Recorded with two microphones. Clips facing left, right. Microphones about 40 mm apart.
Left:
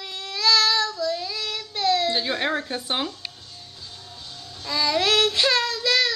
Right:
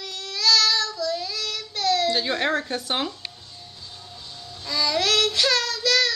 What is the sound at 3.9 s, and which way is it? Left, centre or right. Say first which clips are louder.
Music: even; centre.